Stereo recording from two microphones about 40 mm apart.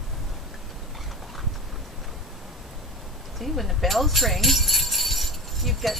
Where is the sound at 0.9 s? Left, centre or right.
Centre.